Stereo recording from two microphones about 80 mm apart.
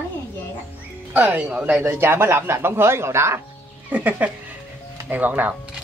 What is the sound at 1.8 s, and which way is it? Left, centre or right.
Speech, right.